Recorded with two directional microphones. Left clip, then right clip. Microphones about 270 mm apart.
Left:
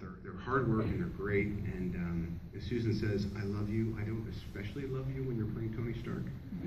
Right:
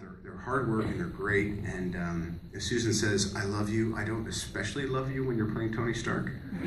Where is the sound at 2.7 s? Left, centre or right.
Right.